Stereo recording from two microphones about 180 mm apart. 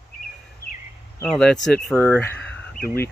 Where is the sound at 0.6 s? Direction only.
55° left (ahead or behind).